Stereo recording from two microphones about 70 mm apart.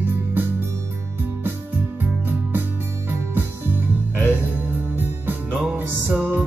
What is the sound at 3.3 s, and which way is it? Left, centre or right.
Music, right.